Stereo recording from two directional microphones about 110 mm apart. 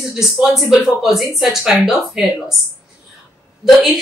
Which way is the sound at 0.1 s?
5° right (ahead or behind).